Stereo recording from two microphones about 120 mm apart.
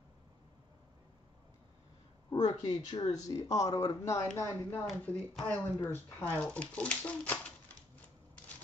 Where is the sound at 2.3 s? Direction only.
35° left (ahead or behind).